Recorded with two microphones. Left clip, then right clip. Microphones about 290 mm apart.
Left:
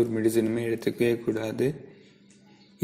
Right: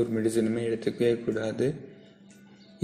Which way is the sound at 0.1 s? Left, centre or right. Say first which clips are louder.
Left 2 dB; left.